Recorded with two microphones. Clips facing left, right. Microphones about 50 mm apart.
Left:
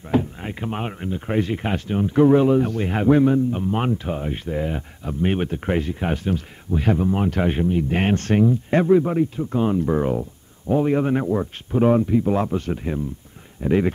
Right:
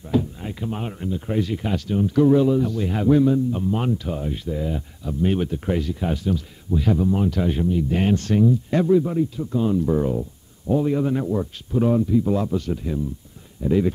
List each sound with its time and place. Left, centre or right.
0.1 s speech: left